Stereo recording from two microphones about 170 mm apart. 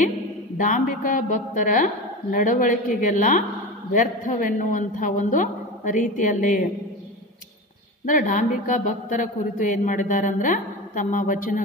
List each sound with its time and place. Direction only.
0.6 s speech: 50° left (ahead or behind)
8.0 s speech: 50° left (ahead or behind)